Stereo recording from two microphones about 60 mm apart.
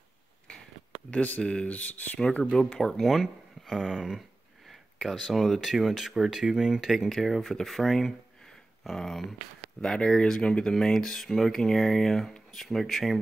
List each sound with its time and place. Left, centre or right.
1.4 s speech: centre
2.7 s speech: centre